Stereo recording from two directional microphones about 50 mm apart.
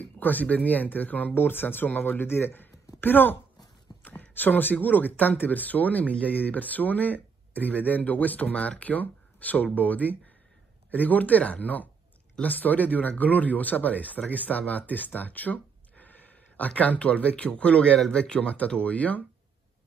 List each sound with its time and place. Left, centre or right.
0.0 s speech: left